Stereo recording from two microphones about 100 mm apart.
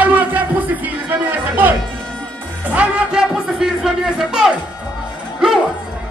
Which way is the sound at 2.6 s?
15° right (ahead or behind).